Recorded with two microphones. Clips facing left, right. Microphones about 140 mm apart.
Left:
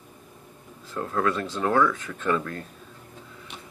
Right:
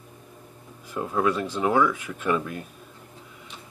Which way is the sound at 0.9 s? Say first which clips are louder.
Right 1 dB; 15° right (ahead or behind).